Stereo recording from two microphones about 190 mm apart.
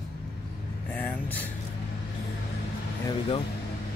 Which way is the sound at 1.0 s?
10° left (ahead or behind).